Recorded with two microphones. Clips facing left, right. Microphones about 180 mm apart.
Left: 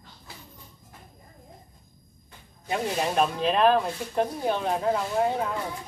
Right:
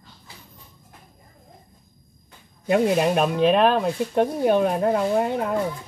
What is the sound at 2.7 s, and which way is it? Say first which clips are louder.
Speech: right 8 dB; 60° right (ahead or behind).